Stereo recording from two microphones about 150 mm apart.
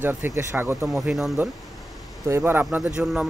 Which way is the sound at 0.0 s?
15° right (ahead or behind).